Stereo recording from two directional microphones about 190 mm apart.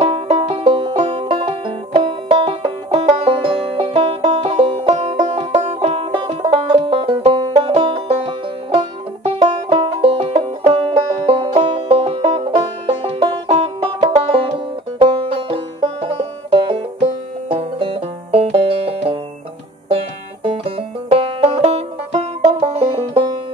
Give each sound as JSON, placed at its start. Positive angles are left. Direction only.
{"t": 0.0, "sound": "music", "side_deg": -30}
{"t": 2.0, "sound": "banjo", "side_deg": -25}
{"t": 17.5, "sound": "banjo", "side_deg": -30}
{"t": 20.4, "sound": "banjo", "side_deg": -30}
{"t": 22.4, "sound": "music", "side_deg": -35}